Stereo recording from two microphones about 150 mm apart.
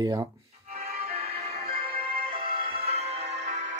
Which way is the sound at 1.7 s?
40° right (ahead or behind).